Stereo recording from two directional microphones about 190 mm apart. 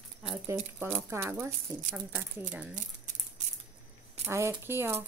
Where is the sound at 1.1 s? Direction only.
15° right (ahead or behind).